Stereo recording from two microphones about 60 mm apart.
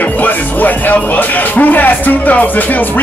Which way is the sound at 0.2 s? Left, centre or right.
Left.